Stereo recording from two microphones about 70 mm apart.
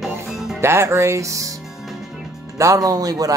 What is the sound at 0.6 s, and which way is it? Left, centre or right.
Speech, right.